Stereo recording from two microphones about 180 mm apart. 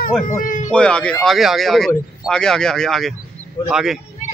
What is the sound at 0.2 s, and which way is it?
Speech, 50° left (ahead or behind).